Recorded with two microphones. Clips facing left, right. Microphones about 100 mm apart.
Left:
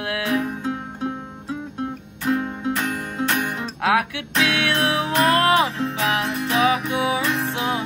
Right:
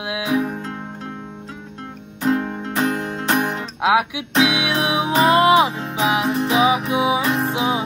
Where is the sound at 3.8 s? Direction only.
10° right (ahead or behind).